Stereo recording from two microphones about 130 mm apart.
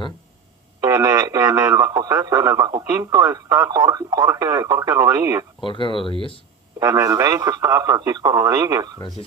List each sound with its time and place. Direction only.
0.7 s speech: 20° right (ahead or behind)
5.6 s speech: 40° left (ahead or behind)
6.8 s speech: 25° right (ahead or behind)